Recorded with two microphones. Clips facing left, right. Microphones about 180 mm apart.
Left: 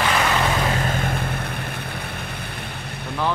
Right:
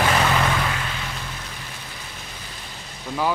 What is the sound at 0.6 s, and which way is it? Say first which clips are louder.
Vehicle: left 6 dB; 45° left (ahead or behind).